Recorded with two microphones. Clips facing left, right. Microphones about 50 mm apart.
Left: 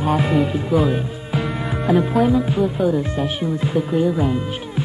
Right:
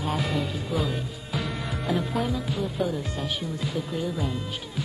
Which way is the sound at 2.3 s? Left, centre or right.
Left.